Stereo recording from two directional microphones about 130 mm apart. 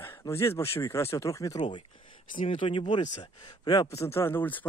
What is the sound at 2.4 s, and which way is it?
Speech, 45° left (ahead or behind).